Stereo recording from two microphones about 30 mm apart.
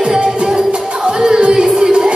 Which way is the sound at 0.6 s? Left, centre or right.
Right.